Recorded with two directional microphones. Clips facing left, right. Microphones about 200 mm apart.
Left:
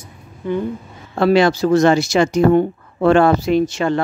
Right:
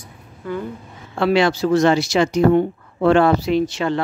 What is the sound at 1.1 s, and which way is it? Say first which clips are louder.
Speech: left 3 dB; 40° left (ahead or behind).